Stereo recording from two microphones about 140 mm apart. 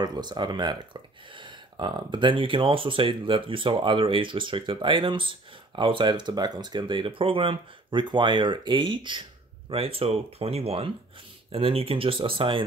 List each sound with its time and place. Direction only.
0.0 s speech: 30° right (ahead or behind)